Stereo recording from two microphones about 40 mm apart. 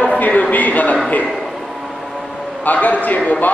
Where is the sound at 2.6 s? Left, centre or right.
Left.